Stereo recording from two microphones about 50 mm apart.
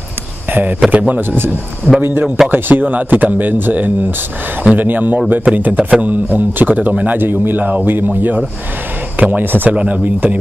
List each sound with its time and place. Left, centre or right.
0.5 s speech: right
2.0 s a man's voice: right
2.2 s speech: centre
2.5 s a man's voice: right
7.2 s a man's voice: right
9.7 s speech: right